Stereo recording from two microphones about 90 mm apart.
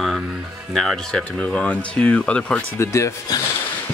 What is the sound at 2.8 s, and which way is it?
Speech, 30° left (ahead or behind).